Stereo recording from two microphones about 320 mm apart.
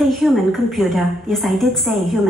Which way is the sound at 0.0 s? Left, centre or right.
Centre.